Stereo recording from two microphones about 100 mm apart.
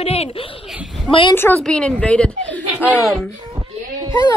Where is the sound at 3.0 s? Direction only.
5° left (ahead or behind).